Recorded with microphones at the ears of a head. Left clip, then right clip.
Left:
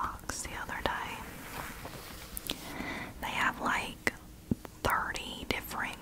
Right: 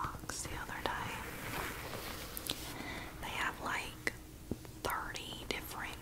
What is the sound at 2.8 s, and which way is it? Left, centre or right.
Whispering, left.